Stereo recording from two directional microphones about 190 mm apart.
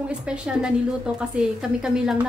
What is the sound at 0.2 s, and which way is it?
A woman's voice, 5° right (ahead or behind).